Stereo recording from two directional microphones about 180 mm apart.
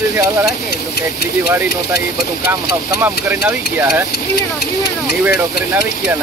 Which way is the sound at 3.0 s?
10° right (ahead or behind).